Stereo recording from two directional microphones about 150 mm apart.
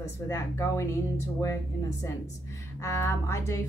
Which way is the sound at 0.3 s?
20° left (ahead or behind).